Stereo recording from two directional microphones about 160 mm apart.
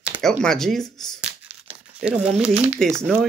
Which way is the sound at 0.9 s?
5° left (ahead or behind).